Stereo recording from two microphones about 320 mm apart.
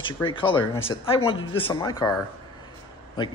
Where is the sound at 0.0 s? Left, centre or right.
Centre.